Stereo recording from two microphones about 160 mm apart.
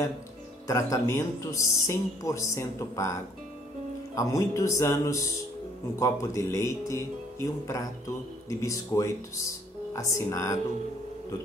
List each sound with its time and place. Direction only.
0.7 s speech: 20° left (ahead or behind)